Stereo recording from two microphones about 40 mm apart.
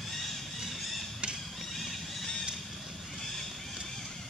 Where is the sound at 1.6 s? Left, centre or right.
Centre.